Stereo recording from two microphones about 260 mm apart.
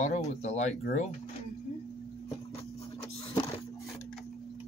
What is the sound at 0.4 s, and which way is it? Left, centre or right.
Speech, left.